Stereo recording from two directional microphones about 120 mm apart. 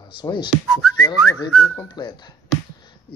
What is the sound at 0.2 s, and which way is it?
Speech, 40° left (ahead or behind).